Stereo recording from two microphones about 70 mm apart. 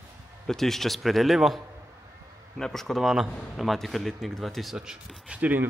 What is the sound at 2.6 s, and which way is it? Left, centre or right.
Speech, centre.